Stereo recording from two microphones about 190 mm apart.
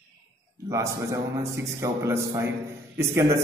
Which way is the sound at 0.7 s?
15° right (ahead or behind).